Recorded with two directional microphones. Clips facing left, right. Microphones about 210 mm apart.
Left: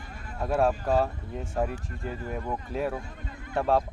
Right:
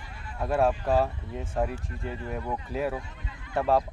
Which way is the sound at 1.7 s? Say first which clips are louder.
Even; 45° left (ahead or behind).